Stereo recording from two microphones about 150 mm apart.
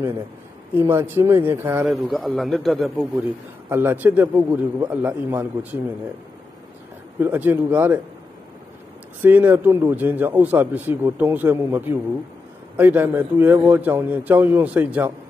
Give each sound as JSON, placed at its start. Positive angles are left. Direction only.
{"t": 0.7, "sound": "a man's voice", "side_deg": -15}
{"t": 2.0, "sound": "a man's voice", "side_deg": 0}
{"t": 3.6, "sound": "a man's voice", "side_deg": -15}
{"t": 7.2, "sound": "a man's voice", "side_deg": -10}
{"t": 9.2, "sound": "a man's voice", "side_deg": -10}